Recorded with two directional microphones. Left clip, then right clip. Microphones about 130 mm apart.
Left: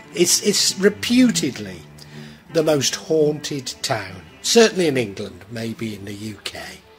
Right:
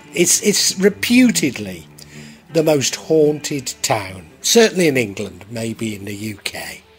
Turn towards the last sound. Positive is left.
turn(degrees=-20)  # may be behind; listen again after turning